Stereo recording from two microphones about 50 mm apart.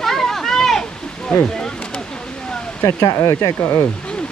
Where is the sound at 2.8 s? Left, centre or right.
Left.